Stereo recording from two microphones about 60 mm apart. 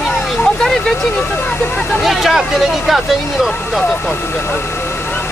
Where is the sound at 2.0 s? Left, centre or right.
Centre.